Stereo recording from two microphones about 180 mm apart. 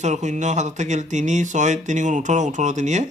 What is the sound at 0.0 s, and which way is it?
Speech, 40° right (ahead or behind).